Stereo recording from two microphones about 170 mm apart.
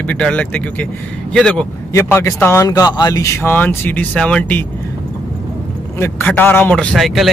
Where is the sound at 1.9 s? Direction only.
15° left (ahead or behind).